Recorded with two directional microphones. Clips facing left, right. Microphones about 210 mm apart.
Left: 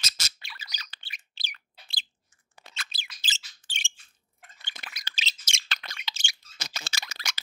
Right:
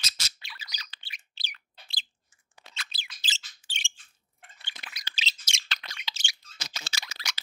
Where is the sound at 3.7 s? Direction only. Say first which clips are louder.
Left 1 dB; 45° left (ahead or behind).